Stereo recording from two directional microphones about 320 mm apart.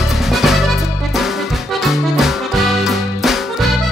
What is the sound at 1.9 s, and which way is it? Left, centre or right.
Music, centre.